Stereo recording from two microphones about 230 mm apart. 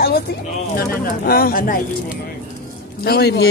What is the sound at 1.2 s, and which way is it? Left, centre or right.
Speech, left.